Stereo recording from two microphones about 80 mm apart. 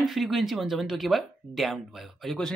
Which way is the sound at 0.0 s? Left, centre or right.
Centre.